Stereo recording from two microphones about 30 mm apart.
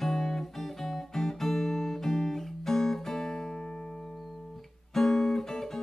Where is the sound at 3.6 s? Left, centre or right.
Left.